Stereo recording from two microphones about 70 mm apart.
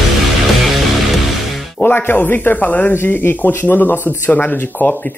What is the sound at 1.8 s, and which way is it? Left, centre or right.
Speech, left.